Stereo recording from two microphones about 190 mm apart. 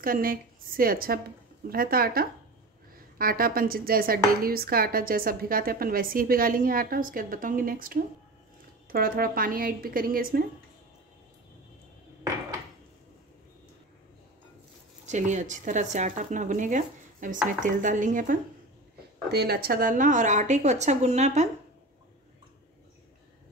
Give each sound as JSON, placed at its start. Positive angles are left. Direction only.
{"t": 0.0, "sound": "speech", "side_deg": -50}
{"t": 15.0, "sound": "speech", "side_deg": -40}
{"t": 19.3, "sound": "speech", "side_deg": -55}